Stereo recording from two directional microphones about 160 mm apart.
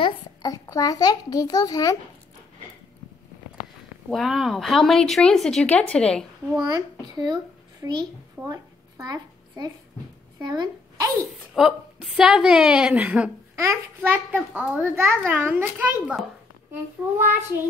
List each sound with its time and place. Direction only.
0.0 s a child's voice: 25° left (ahead or behind)
4.1 s speech: centre (ahead or behind)
6.6 s a child's voice: 25° right (ahead or behind)
8.5 s a sound: 20° right (ahead or behind)
10.4 s a child's voice: 25° right (ahead or behind)
11.5 s a child's voice: 5° right (ahead or behind)